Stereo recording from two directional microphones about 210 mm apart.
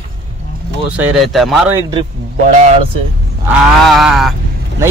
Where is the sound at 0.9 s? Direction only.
5° right (ahead or behind).